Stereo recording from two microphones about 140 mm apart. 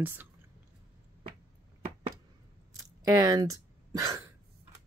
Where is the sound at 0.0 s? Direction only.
15° right (ahead or behind).